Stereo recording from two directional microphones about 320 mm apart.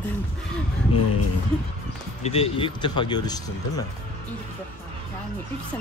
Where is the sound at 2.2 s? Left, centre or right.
Centre.